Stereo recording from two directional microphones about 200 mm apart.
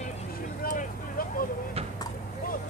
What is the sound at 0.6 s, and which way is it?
Vehicle, 45° left (ahead or behind).